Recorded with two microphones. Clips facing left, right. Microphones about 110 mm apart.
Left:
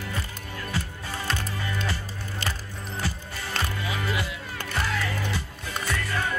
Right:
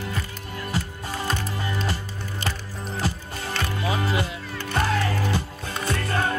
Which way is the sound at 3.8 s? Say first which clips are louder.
Right 5 dB; 30° right (ahead or behind).